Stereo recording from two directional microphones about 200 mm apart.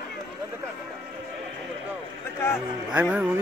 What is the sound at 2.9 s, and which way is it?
Music, 5° right (ahead or behind).